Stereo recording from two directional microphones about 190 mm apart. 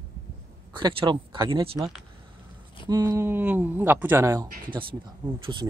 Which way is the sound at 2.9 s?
15° right (ahead or behind).